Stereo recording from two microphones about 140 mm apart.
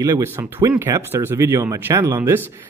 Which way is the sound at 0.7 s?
15° right (ahead or behind).